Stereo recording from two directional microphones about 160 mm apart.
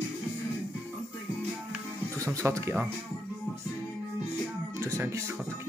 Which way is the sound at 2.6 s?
10° right (ahead or behind).